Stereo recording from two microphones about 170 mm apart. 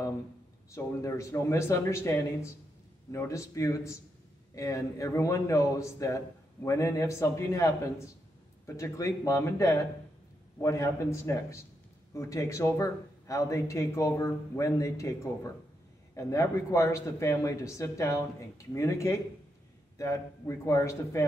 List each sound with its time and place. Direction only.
0.7 s a man's voice: 15° left (ahead or behind)